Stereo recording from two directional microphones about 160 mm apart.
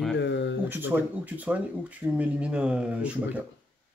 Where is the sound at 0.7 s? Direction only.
10° right (ahead or behind).